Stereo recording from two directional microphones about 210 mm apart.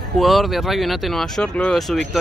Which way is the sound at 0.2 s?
Centre (ahead or behind).